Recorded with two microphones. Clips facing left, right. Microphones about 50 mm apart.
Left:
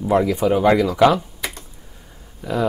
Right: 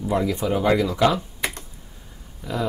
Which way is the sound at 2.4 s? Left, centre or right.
Centre.